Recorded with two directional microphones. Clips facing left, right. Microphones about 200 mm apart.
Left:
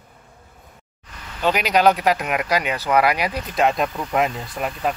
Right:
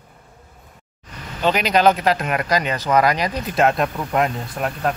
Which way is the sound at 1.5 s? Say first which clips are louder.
Right 1 dB; 10° left (ahead or behind).